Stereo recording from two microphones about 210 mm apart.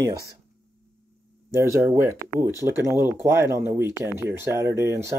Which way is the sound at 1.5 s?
10° right (ahead or behind).